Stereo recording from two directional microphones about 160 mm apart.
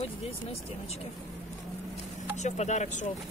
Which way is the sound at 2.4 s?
45° left (ahead or behind).